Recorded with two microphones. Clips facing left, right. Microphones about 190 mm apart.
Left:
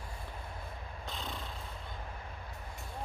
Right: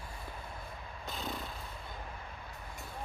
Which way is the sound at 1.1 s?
5° right (ahead or behind).